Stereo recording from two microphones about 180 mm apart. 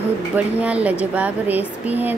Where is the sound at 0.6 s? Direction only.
5° right (ahead or behind).